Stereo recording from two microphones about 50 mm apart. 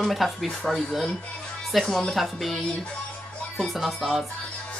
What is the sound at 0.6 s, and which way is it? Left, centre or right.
Music, centre.